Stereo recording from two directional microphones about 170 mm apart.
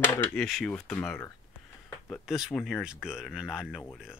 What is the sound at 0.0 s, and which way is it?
Speech, 10° left (ahead or behind).